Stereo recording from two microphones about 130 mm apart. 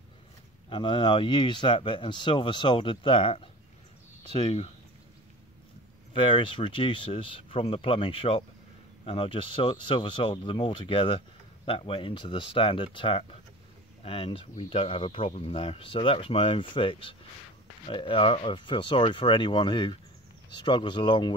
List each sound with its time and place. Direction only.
0.7 s speech: 40° left (ahead or behind)
4.4 s speech: 55° left (ahead or behind)
6.1 s speech: 40° left (ahead or behind)